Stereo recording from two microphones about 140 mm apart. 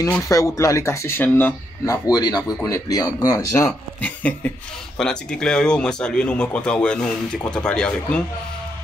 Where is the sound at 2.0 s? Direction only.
30° left (ahead or behind).